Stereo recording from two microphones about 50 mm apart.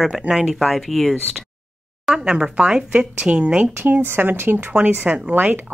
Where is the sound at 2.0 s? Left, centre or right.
Centre; by 3.7 s right.